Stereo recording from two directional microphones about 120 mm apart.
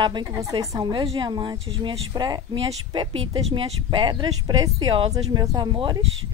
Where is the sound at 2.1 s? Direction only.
35° right (ahead or behind).